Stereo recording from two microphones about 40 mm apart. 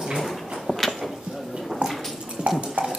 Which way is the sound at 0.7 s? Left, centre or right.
Centre.